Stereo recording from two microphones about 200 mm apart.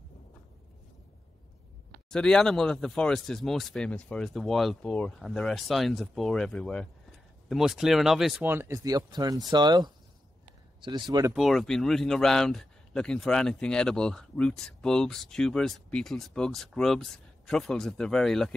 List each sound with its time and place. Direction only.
2.0 s speech: 5° left (ahead or behind); by 11.3 s 20° right (ahead or behind)
11.3 s speech: centre (ahead or behind)